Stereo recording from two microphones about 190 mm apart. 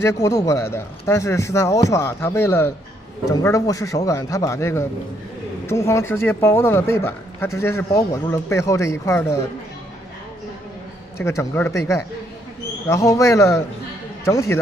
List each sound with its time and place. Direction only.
0.0 s speech: 15° left (ahead or behind)
11.1 s speech: 15° left (ahead or behind)